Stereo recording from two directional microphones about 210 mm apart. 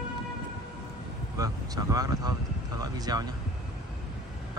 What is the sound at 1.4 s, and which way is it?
Vehicle, 15° right (ahead or behind).